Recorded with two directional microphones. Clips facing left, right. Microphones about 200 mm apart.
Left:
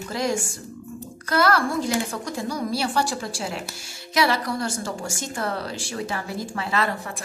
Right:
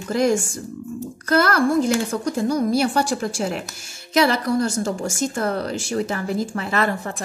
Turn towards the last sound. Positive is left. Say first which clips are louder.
# right 4 dB
turn(degrees=-50)  # may be behind; listen again after turning